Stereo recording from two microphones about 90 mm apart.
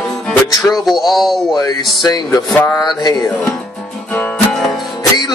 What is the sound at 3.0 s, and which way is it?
Music, 50° left (ahead or behind).